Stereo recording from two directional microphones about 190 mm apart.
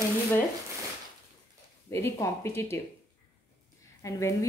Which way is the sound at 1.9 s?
15° left (ahead or behind).